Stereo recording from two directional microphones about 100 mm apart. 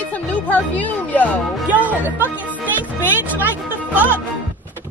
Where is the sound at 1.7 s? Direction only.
15° right (ahead or behind).